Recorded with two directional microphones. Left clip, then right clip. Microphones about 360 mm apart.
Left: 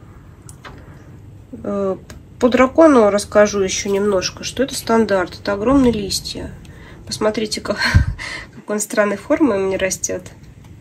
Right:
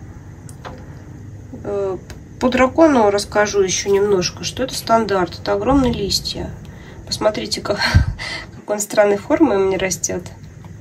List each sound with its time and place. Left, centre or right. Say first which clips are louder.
2.5 s speech: left 2 dB; centre
4.5 s speech: left 2 dB; right
4.8 s speech: right 1 dB; centre